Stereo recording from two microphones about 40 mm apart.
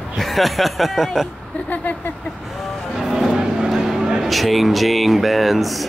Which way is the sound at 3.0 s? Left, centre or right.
Centre.